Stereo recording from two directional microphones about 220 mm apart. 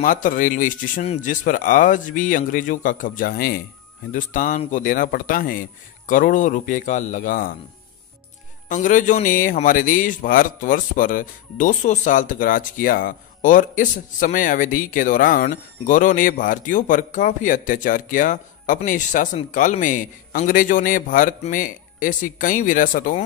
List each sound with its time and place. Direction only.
0.0 s a man's voice: 35° left (ahead or behind)
8.6 s a man's voice: 35° left (ahead or behind)